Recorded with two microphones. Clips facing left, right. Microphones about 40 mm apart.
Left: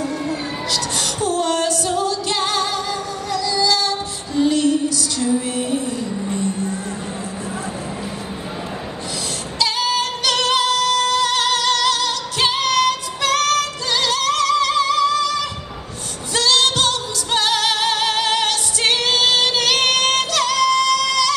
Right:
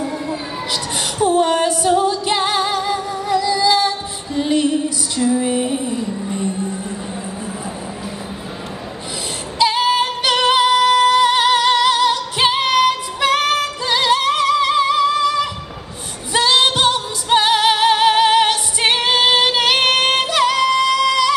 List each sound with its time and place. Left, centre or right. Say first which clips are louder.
1.2 s music: right 5 dB; centre
4.4 s female singing: left 1 dB; centre
6.3 s music: even; centre
9.6 s music: right 5 dB; centre